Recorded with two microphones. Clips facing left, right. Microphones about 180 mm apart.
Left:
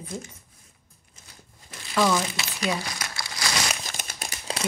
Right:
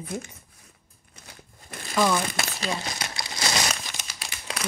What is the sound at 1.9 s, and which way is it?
Speech, centre (ahead or behind).